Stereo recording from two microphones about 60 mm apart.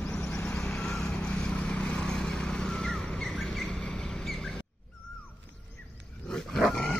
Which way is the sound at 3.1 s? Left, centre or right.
Centre.